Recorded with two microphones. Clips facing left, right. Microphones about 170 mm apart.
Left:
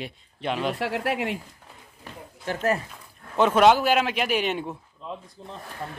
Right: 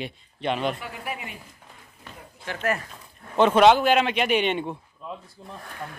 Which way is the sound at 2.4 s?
35° left (ahead or behind).